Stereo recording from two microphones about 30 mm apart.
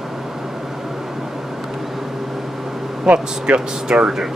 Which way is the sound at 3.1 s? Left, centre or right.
Right.